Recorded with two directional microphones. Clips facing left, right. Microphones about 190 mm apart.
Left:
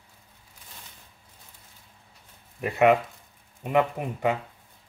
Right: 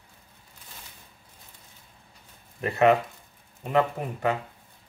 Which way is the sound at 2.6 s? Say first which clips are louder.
Even; 15° left (ahead or behind).